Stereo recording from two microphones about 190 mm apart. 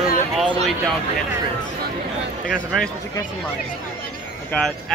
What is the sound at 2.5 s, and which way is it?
Speech, centre (ahead or behind).